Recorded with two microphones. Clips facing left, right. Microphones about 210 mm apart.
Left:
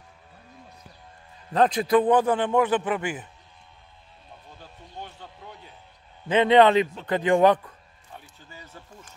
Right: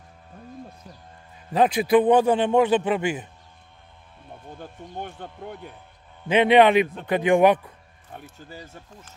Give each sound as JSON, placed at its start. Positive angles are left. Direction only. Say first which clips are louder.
{"t": 1.5, "sound": "a man's voice", "louder": "right 2 dB", "side_deg": -10}
{"t": 2.0, "sound": "a man's voice", "louder": "right 3 dB", "side_deg": -25}
{"t": 4.3, "sound": "speech", "louder": "right 8 dB", "side_deg": -55}
{"t": 6.2, "sound": "a man's voice", "louder": "right 1 dB", "side_deg": -15}
{"t": 8.1, "sound": "speech", "louder": "right 6 dB", "side_deg": -45}